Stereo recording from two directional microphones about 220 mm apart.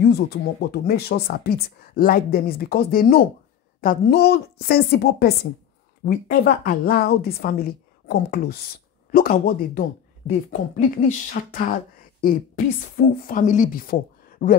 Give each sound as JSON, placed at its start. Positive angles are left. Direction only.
{"t": 0.0, "sound": "speech", "side_deg": 45}